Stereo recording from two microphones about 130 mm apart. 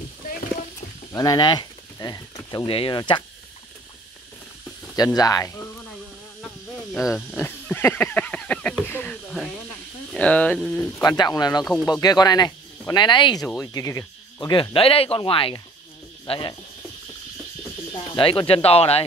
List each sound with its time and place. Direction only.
0.2 s a sound: 90° left
1.1 s speech: 30° left (ahead or behind)
4.9 s speech: 30° left (ahead or behind)
6.4 s wild animals: centre (ahead or behind)
7.4 s a sound: 15° left (ahead or behind)
10.1 s speech: 10° left (ahead or behind)
11.0 s speech: 30° left (ahead or behind)
18.1 s speech: 40° left (ahead or behind)